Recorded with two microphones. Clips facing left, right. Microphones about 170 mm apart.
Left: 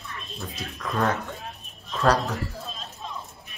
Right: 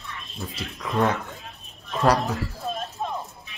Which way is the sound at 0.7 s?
20° right (ahead or behind).